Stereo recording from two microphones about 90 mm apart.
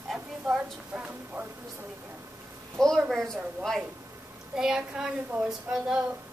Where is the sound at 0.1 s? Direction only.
10° right (ahead or behind).